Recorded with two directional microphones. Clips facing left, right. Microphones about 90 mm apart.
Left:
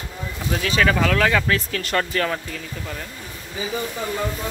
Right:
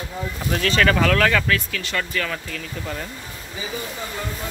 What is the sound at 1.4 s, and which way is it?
Speech, 30° left (ahead or behind).